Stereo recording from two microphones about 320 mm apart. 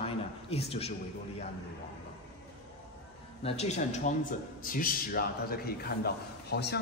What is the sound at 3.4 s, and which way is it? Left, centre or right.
A man's voice, left.